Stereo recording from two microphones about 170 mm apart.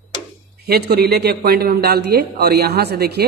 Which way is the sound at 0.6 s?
70° right (ahead or behind).